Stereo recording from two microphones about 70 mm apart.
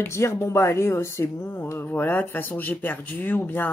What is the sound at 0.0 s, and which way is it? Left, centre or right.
Speech, left.